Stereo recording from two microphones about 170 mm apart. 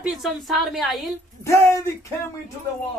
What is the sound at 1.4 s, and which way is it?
Speech, 15° left (ahead or behind).